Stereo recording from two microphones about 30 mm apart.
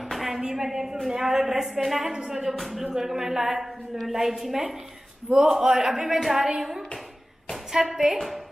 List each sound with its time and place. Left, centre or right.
0.1 s a sound: centre
0.4 s a woman's voice: centre
2.8 s a woman's voice: centre
7.7 s a woman's voice: centre